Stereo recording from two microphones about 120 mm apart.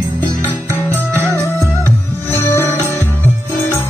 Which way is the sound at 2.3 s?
20° left (ahead or behind).